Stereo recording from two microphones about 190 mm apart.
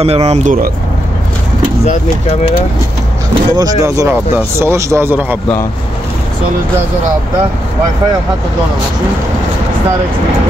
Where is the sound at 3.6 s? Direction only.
20° right (ahead or behind).